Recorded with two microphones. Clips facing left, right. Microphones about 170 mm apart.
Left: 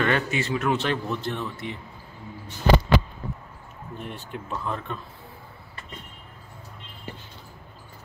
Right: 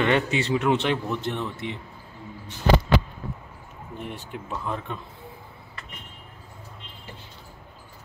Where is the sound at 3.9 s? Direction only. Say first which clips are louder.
Right 1 dB; 15° right (ahead or behind).